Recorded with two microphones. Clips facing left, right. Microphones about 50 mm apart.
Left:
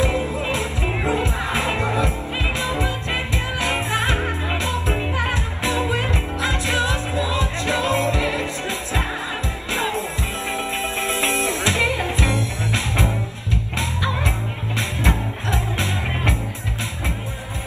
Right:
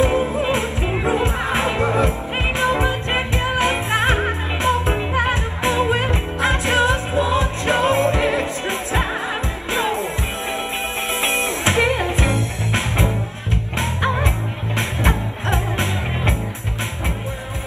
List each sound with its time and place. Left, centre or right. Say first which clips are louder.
0.3 s music: right 4 dB; right
11.2 s music: right 2 dB; right